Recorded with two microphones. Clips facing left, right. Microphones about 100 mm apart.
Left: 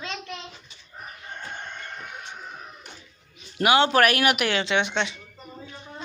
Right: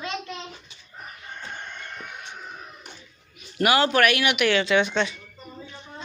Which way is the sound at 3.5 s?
25° left (ahead or behind).